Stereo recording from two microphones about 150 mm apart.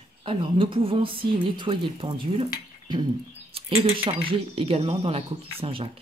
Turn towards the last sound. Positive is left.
turn(degrees=-40)  # may be behind; listen again after turning